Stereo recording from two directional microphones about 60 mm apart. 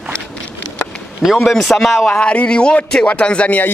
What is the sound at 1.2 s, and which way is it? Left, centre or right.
Speech, centre.